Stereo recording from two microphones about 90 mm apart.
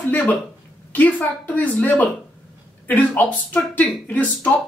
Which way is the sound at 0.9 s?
20° left (ahead or behind).